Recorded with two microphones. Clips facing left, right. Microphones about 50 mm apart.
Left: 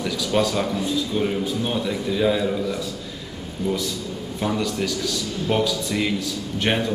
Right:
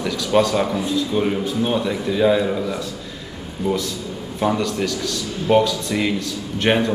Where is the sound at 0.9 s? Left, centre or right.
Centre.